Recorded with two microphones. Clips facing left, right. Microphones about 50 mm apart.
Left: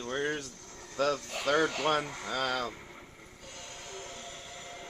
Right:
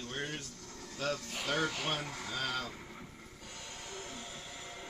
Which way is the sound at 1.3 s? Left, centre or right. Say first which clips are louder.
Left 9 dB; left.